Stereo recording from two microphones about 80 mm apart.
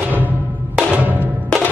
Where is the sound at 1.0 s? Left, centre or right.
Right.